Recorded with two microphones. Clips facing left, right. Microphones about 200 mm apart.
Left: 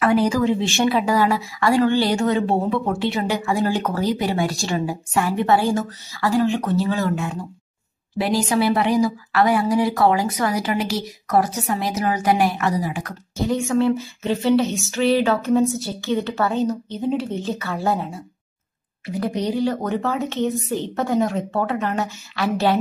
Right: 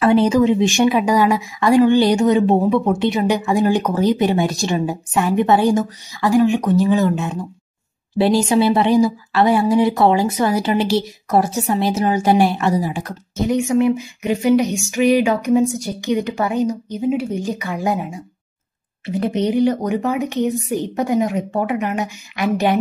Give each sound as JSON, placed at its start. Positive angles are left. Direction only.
{"t": 0.0, "sound": "speech", "side_deg": -25}